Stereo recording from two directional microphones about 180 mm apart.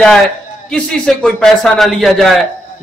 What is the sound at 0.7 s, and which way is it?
A man's voice, 5° left (ahead or behind).